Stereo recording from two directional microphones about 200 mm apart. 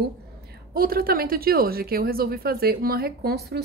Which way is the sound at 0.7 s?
50° right (ahead or behind).